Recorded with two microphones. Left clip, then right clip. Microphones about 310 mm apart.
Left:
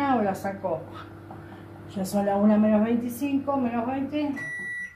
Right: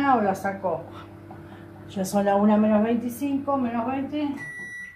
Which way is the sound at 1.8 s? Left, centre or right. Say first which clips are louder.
Right 3 dB; right.